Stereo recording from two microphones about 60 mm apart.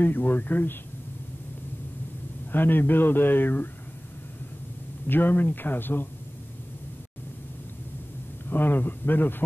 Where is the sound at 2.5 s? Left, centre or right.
Left.